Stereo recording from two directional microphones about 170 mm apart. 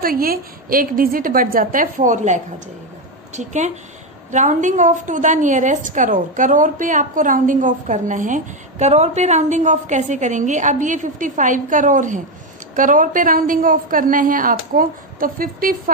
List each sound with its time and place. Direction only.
0.0 s a woman's voice: 60° right (ahead or behind)